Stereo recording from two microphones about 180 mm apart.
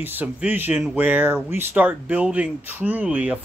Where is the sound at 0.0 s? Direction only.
10° right (ahead or behind).